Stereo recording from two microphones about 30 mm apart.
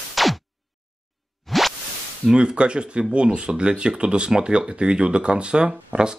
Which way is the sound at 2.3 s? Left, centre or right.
Right.